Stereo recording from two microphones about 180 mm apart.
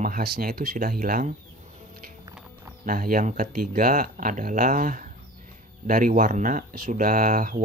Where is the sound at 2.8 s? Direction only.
55° right (ahead or behind).